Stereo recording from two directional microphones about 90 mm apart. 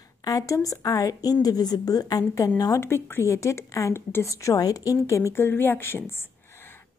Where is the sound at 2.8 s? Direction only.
30° left (ahead or behind).